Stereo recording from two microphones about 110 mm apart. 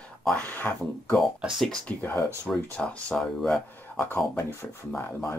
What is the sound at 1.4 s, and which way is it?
Speech, 5° right (ahead or behind).